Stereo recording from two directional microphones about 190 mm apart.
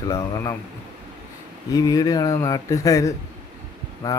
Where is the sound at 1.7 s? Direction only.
20° left (ahead or behind).